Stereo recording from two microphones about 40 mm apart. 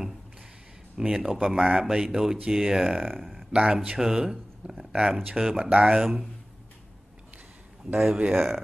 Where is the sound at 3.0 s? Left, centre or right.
Centre.